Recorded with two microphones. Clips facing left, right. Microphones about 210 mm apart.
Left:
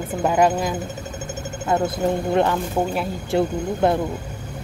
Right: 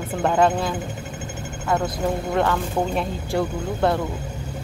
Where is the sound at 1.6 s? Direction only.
25° left (ahead or behind).